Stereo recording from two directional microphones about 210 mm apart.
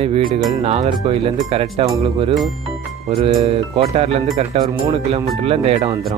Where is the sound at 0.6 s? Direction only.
30° right (ahead or behind).